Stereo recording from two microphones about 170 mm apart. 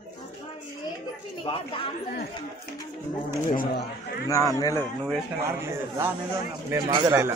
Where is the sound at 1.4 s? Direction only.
30° left (ahead or behind).